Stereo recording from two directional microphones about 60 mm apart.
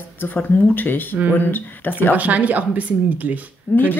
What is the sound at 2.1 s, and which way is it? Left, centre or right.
Speech, right.